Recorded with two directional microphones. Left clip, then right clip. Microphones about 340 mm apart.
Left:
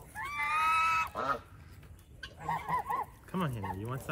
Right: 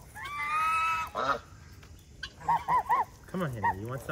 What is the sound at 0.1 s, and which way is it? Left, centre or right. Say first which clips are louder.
Screaming: right 1 dB; centre.